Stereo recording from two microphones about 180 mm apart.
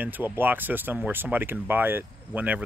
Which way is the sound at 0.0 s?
10° right (ahead or behind).